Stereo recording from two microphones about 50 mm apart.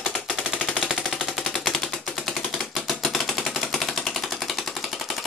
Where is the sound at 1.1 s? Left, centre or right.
Centre.